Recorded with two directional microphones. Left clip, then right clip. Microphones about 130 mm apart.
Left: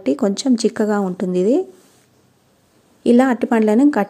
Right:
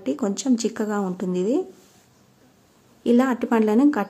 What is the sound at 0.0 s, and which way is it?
A woman's voice, 40° left (ahead or behind).